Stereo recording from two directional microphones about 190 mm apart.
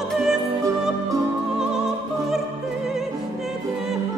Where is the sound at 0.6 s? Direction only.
20° right (ahead or behind).